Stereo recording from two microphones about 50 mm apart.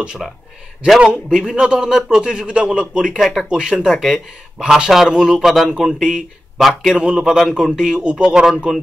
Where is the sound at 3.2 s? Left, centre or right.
Centre.